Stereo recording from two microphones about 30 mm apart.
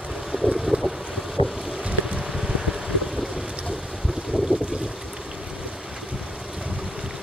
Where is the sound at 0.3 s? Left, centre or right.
Centre.